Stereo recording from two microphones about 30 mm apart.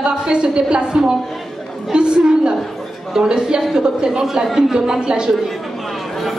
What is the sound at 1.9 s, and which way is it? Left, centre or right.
A woman's voice, right.